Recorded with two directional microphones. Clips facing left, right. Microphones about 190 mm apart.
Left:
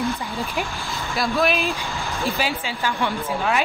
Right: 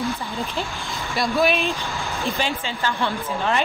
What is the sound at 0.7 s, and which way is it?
Speech, centre (ahead or behind).